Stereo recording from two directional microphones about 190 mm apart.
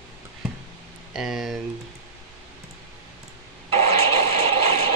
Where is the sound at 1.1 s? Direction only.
Centre (ahead or behind).